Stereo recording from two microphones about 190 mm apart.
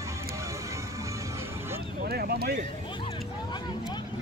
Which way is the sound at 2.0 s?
55° right (ahead or behind).